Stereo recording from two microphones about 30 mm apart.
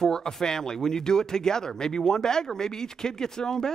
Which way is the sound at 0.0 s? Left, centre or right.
Centre.